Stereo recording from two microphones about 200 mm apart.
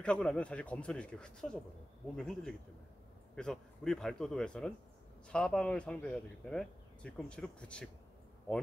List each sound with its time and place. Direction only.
0.0 s speech: 5° left (ahead or behind)